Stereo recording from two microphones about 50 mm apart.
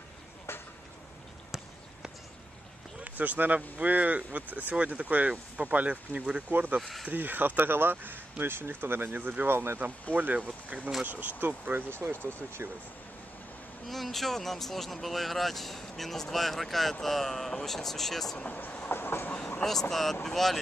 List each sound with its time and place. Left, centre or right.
0.5 s a sound: left
3.0 s speech: right
6.5 s speech: right
6.8 s speech: centre
7.1 s speech: right
10.1 s speech: right
12.2 s train: left
13.8 s speech: centre
18.5 s train: left
18.9 s train: left
19.6 s speech: centre